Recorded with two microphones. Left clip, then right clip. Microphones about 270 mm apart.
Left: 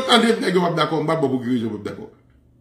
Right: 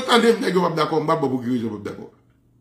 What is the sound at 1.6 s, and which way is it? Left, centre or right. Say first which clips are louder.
Speech: left 1 dB; centre.